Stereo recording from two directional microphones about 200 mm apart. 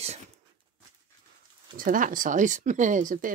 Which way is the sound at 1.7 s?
45° right (ahead or behind).